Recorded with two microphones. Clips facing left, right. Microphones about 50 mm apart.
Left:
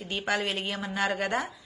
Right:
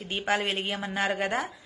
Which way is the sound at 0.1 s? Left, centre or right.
Right.